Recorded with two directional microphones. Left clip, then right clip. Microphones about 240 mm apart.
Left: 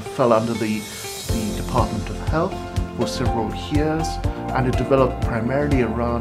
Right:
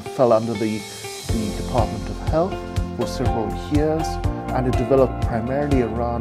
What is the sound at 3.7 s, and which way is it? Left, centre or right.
Speech, centre.